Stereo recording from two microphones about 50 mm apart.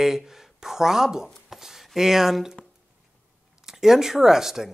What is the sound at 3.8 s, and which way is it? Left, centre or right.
Speech, centre.